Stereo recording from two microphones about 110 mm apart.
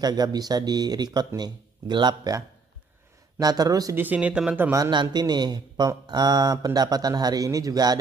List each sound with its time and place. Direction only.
0.0 s speech: 35° right (ahead or behind)
3.9 s speech: 15° right (ahead or behind)
4.9 s speech: 40° right (ahead or behind)